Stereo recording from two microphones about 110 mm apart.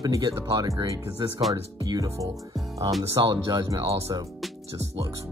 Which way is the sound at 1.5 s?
35° right (ahead or behind).